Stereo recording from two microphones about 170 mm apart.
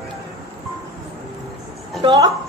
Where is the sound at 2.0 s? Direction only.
25° right (ahead or behind).